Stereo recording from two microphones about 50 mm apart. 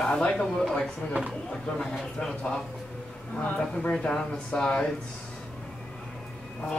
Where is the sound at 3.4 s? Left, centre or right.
Left.